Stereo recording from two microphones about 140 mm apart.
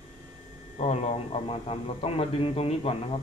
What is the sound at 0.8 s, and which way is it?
Speech, 50° left (ahead or behind).